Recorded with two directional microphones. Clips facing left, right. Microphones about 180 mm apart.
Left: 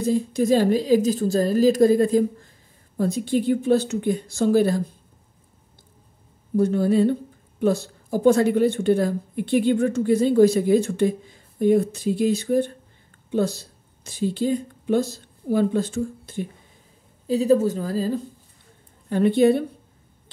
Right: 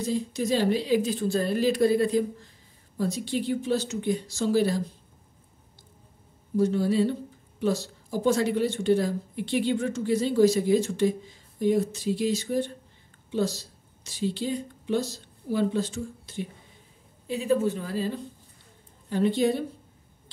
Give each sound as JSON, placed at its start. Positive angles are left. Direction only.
{"t": 0.0, "sound": "speech", "side_deg": 50}
{"t": 6.5, "sound": "speech", "side_deg": 55}
{"t": 17.3, "sound": "a woman's voice", "side_deg": 40}
{"t": 19.0, "sound": "speech", "side_deg": 55}